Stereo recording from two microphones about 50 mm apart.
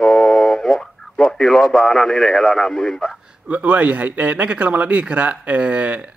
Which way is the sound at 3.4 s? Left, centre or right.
Right.